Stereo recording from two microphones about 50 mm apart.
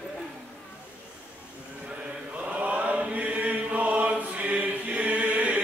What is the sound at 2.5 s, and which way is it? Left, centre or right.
Chant, right.